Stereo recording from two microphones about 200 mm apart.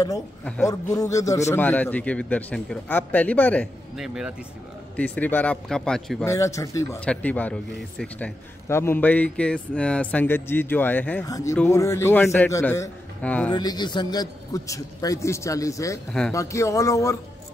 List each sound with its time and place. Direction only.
0.5 s a man's voice: 15° left (ahead or behind)
3.9 s a man's voice: centre (ahead or behind)
6.2 s a man's voice: 15° left (ahead or behind)
13.5 s a man's voice: 20° left (ahead or behind)